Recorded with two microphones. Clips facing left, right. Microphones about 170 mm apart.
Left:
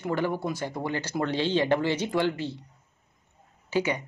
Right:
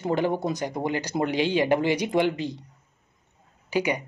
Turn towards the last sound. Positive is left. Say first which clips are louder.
# right 1 dB
turn(degrees=-15)  # may be behind; listen again after turning